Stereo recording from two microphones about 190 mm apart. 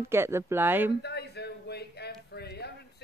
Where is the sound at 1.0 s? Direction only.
60° left (ahead or behind).